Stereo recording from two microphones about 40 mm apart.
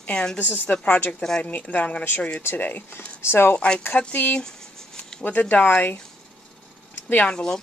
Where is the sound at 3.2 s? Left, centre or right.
Left.